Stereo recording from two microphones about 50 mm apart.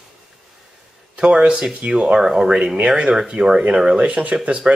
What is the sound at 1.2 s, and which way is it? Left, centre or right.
Speech, right.